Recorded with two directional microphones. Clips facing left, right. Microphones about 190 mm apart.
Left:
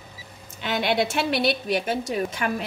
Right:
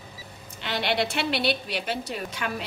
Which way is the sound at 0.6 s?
50° left (ahead or behind).